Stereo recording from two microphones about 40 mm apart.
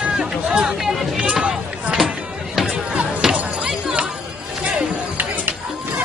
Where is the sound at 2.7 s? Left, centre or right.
Right.